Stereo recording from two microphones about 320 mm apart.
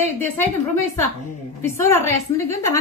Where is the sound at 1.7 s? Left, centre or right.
Centre.